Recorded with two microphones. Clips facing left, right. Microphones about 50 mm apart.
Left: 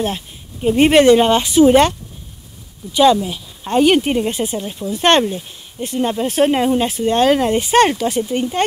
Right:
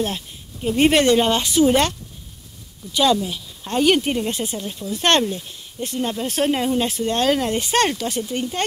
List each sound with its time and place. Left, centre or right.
0.0 s a woman's voice: centre